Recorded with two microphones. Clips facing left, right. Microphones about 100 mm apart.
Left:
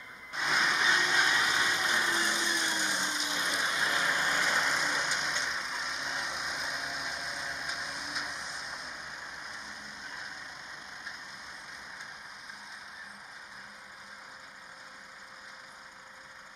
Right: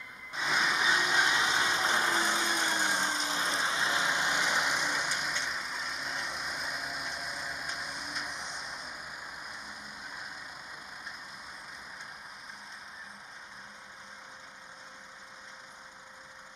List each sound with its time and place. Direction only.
0.3 s a sound: centre (ahead or behind); by 2.2 s 35° right (ahead or behind)
2.3 s vehicle: 40° right (ahead or behind); by 4.7 s 15° right (ahead or behind)
4.7 s vehicle: 5° right (ahead or behind)